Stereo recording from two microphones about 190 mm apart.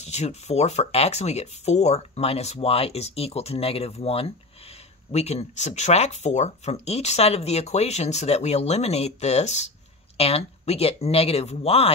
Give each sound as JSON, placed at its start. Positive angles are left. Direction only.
{"t": 0.0, "sound": "speech", "side_deg": 35}